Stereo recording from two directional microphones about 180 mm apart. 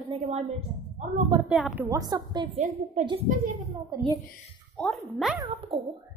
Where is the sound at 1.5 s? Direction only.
5° right (ahead or behind).